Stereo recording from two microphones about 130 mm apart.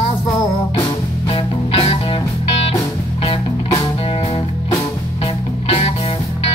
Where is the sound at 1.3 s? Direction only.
45° left (ahead or behind).